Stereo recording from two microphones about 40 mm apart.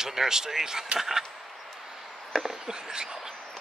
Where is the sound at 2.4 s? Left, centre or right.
Centre.